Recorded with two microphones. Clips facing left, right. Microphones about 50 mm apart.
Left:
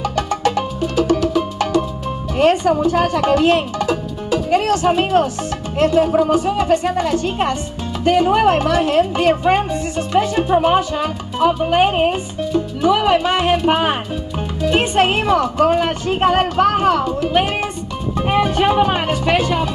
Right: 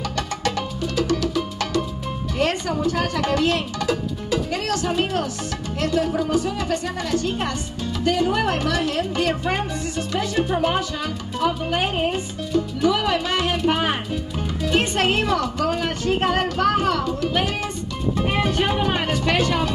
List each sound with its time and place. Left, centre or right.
0.1 s music: left
2.3 s speech: left